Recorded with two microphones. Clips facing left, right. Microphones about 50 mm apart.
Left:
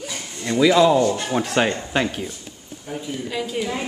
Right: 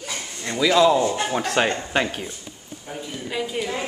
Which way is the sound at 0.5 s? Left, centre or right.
Centre.